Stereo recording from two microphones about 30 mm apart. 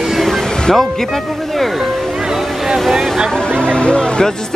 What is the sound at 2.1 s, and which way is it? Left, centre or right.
Music, centre.